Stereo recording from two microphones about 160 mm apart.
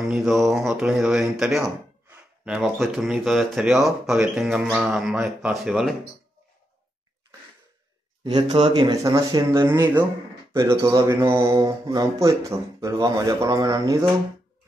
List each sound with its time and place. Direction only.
0.1 s speech: centre (ahead or behind)
8.2 s speech: 30° right (ahead or behind)